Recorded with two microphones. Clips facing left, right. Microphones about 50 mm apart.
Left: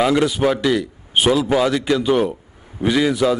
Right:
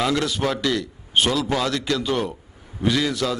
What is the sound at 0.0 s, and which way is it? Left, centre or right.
A man's voice, centre.